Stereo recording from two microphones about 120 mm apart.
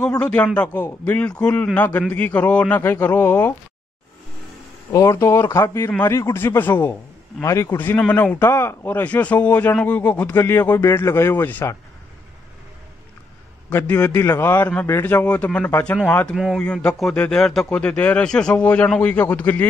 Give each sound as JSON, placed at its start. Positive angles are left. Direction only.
{"t": 0.2, "sound": "a man's voice", "side_deg": 10}
{"t": 4.9, "sound": "a man's voice", "side_deg": 25}
{"t": 7.7, "sound": "a man's voice", "side_deg": 15}
{"t": 13.7, "sound": "a man's voice", "side_deg": 15}
{"t": 16.3, "sound": "speech", "side_deg": -5}
{"t": 16.6, "sound": "a man's voice", "side_deg": 10}